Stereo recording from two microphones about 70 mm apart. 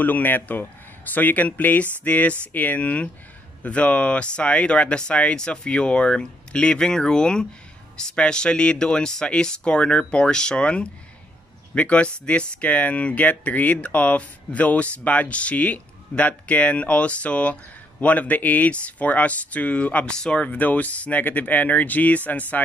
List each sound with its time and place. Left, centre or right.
0.0 s speech: left